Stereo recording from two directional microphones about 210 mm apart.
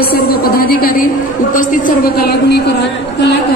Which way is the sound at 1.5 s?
40° left (ahead or behind).